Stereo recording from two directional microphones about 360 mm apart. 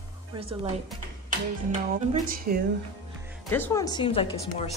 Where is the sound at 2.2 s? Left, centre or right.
Right.